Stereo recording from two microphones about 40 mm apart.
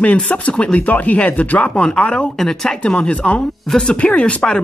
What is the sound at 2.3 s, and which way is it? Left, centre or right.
Speech, centre.